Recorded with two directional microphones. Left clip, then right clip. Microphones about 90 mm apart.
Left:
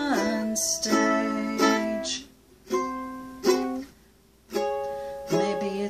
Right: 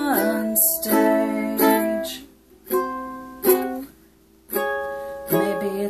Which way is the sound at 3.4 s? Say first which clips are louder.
Right 4 dB; centre (ahead or behind).